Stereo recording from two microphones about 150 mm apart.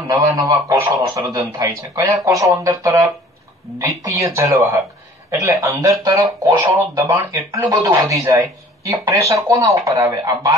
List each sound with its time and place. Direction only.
0.5 s speech: 25° right (ahead or behind)